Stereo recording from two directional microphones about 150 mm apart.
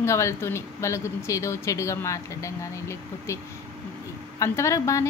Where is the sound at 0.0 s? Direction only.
20° left (ahead or behind).